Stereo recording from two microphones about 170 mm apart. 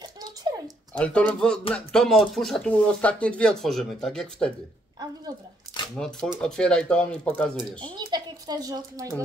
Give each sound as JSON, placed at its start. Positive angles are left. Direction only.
{"t": 0.0, "sound": "a sound", "side_deg": -25}
{"t": 0.9, "sound": "speech", "side_deg": 5}
{"t": 5.9, "sound": "speech", "side_deg": 5}
{"t": 7.8, "sound": "speech", "side_deg": -25}